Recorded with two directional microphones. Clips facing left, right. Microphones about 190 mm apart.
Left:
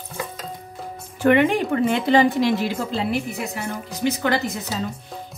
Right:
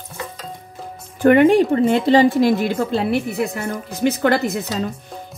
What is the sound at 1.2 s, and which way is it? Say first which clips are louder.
Speech: right 5 dB; 45° right (ahead or behind).